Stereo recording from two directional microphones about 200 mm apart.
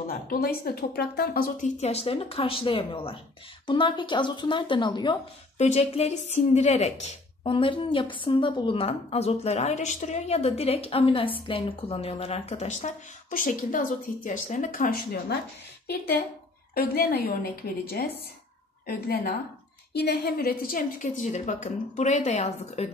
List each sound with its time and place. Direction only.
0.0 s speech: 50° left (ahead or behind)
1.8 s speech: 30° left (ahead or behind)
5.6 s a woman's voice: 35° left (ahead or behind)
16.7 s a woman's voice: 50° left (ahead or behind); by 22.8 s 35° left (ahead or behind)